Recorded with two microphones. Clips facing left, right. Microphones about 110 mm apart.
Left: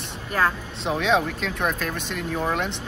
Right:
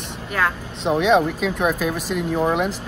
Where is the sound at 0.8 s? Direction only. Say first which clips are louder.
Right 5 dB; centre (ahead or behind).